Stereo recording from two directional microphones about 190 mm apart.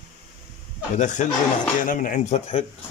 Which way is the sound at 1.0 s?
40° left (ahead or behind).